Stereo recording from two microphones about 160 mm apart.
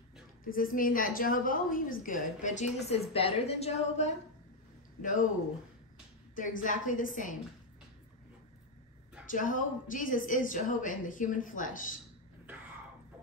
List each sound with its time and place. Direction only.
0.4 s a woman's voice: 60° left (ahead or behind); by 4.1 s 40° left (ahead or behind)
6.3 s a woman's voice: 55° left (ahead or behind)
9.2 s a woman's voice: 55° left (ahead or behind)